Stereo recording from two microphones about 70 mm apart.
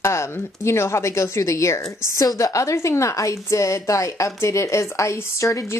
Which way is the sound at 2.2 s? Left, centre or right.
Left.